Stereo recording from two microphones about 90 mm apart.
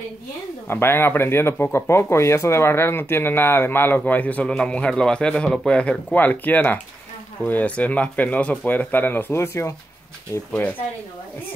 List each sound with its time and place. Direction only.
0.7 s speech: 25° left (ahead or behind)